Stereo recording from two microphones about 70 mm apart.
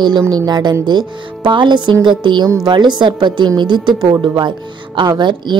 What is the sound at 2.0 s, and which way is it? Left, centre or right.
Speech, right.